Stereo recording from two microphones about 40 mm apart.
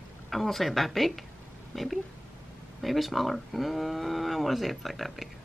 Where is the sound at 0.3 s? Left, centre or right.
Centre.